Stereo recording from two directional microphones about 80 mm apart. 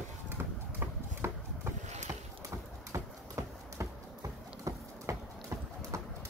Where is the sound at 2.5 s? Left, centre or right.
Right.